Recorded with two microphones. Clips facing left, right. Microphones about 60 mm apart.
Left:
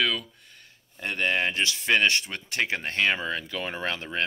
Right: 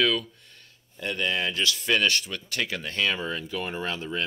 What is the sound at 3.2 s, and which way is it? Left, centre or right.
Speech, left.